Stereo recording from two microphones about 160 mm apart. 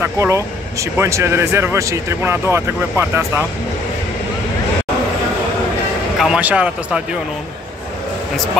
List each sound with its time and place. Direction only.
0.0 s speech: 15° right (ahead or behind)
6.1 s speech: 5° right (ahead or behind)